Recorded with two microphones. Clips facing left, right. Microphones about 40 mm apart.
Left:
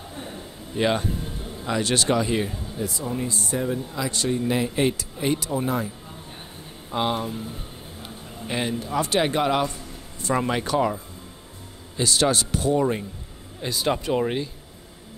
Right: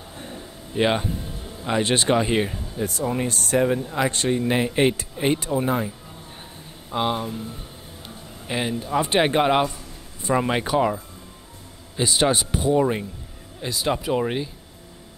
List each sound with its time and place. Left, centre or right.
0.7 s speech: centre
2.8 s speech: right
6.9 s speech: centre
8.5 s speech: centre
8.9 s speech: right
12.0 s speech: centre
13.6 s speech: centre